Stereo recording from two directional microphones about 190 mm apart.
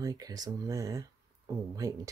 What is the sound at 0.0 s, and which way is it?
Speech, 20° right (ahead or behind).